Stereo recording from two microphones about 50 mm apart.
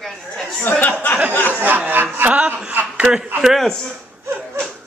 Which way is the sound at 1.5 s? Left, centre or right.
Right.